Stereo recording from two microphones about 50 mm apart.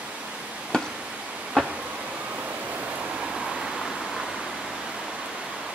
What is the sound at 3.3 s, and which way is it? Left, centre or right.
Waterfall, centre.